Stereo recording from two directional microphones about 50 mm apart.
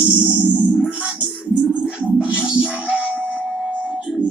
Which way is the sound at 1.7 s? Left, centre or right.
Right.